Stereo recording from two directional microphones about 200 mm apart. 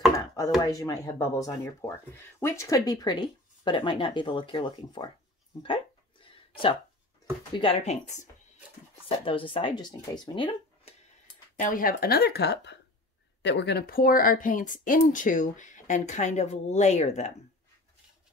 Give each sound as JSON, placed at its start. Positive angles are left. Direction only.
{"t": 0.6, "sound": "speech", "side_deg": 20}
{"t": 5.6, "sound": "a sound", "side_deg": 25}
{"t": 7.5, "sound": "speech", "side_deg": 30}
{"t": 11.6, "sound": "speech", "side_deg": 45}